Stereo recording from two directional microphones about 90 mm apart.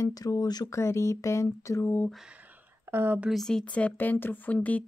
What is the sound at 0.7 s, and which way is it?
A woman's voice, 30° left (ahead or behind).